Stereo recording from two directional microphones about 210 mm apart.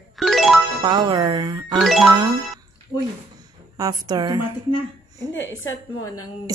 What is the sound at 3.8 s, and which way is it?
Speech, 20° right (ahead or behind).